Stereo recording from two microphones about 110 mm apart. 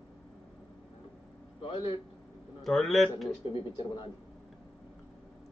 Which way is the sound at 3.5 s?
45° left (ahead or behind).